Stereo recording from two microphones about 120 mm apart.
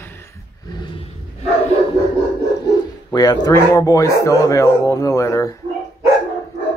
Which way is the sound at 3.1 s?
35° left (ahead or behind).